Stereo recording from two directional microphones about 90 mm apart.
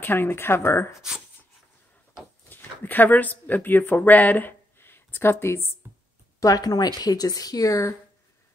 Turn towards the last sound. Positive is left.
turn(degrees=35)  # may be behind; listen again after turning